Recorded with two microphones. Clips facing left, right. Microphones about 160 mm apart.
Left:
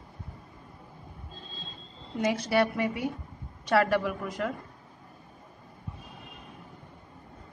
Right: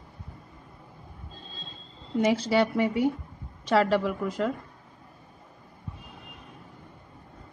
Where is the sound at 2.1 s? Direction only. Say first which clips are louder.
Right 3 dB; 25° right (ahead or behind).